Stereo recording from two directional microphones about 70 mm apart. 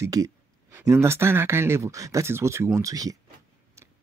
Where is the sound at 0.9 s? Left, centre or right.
Right.